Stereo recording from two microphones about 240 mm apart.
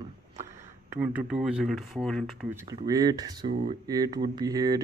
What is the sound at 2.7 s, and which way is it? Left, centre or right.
Speech, centre.